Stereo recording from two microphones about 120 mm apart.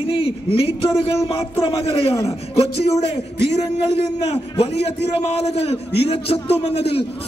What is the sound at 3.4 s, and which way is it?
Speech, 25° right (ahead or behind).